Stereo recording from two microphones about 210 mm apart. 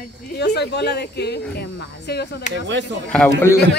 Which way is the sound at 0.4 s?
55° left (ahead or behind).